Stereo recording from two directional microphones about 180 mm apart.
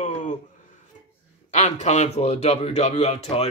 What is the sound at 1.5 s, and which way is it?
Speech, 40° left (ahead or behind).